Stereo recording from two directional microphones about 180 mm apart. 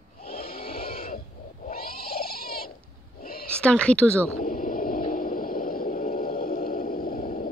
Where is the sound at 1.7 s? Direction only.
55° left (ahead or behind).